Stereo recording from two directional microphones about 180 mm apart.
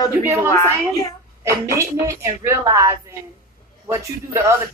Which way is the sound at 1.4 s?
15° right (ahead or behind).